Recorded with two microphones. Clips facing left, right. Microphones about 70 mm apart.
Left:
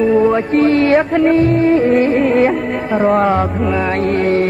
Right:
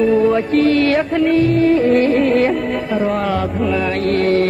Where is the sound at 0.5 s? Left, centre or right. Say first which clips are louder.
Left 2 dB; left.